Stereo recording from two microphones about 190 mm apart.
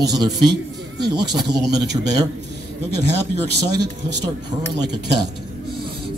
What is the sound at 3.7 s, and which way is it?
Speech, 60° right (ahead or behind).